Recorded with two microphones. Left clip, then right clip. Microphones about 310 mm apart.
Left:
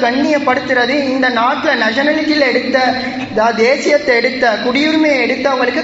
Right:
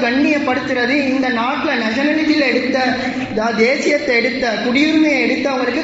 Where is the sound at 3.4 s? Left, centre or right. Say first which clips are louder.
Left 4 dB; left.